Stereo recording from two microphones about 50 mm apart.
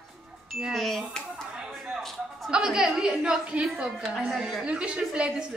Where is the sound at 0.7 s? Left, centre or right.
Centre.